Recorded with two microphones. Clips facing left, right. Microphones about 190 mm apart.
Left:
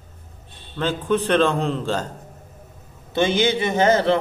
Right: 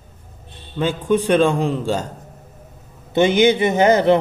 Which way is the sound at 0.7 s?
10° right (ahead or behind).